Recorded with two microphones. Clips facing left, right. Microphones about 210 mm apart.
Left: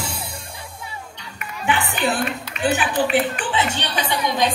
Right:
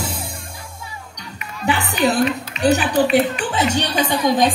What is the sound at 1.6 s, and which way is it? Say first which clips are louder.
Music: right 3 dB; 40° right (ahead or behind).